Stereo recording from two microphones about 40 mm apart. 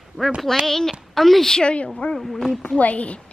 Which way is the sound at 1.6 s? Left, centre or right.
Left.